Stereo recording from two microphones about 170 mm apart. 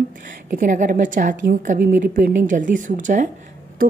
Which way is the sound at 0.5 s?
50° right (ahead or behind).